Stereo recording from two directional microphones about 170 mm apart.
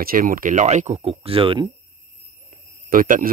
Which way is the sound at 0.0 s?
60° right (ahead or behind).